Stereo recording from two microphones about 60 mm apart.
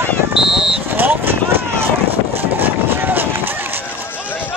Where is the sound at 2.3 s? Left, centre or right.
Right.